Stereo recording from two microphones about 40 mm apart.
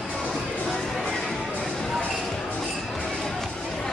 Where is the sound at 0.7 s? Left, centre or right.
Centre.